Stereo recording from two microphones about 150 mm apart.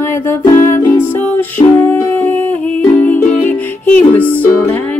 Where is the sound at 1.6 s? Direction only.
35° left (ahead or behind).